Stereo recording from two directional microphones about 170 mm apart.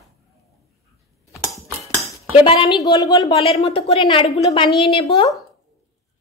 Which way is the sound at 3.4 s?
35° left (ahead or behind).